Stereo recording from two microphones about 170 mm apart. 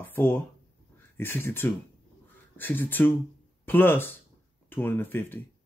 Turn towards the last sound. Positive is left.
turn(degrees=10)  # may be behind; listen again after turning